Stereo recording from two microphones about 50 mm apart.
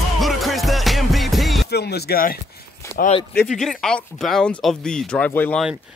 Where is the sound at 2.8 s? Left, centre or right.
Left.